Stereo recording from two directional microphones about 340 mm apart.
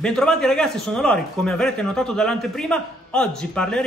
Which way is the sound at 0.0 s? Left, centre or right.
Centre.